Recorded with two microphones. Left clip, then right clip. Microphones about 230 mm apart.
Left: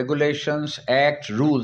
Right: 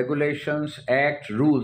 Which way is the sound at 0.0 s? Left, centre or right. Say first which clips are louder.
Left 3 dB; left.